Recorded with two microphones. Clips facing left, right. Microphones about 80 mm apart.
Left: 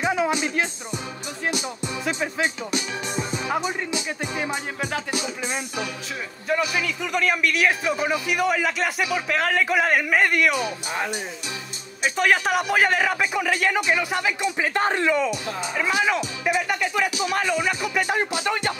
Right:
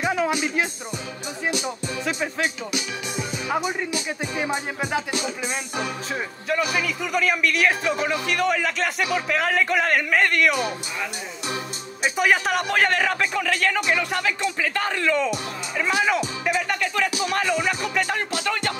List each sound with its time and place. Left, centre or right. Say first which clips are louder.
0.0 s music: even; centre
1.6 s a man's voice: right 1 dB; centre
4.5 s music: right 2 dB; centre
5.2 s speech: even; centre
12.0 s a man's voice: even; centre
14.6 s speech: left 3 dB; left
15.0 s a man's voice: even; centre